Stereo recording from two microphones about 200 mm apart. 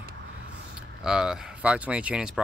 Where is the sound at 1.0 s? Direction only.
5° right (ahead or behind).